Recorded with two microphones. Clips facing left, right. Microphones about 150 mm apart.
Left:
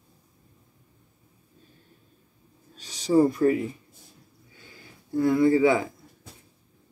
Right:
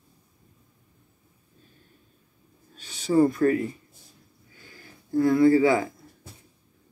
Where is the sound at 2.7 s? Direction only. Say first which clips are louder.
Even; 35° left (ahead or behind).